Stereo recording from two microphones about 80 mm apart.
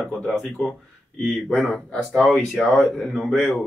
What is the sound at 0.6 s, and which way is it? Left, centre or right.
Speech, centre.